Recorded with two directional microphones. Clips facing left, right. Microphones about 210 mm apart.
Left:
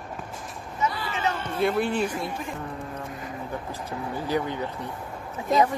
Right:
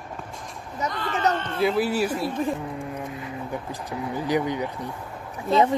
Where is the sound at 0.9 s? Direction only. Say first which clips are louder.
Right 8 dB; 5° left (ahead or behind).